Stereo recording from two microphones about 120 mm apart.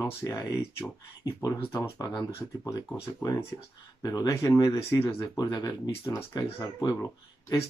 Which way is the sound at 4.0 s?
35° left (ahead or behind).